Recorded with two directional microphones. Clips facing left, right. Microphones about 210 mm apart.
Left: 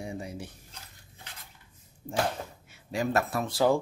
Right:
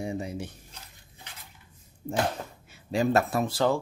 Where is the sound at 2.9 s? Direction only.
25° right (ahead or behind).